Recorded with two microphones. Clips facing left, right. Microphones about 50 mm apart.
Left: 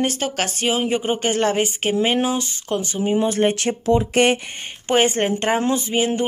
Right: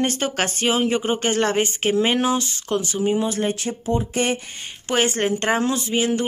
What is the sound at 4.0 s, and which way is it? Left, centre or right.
Speech, left.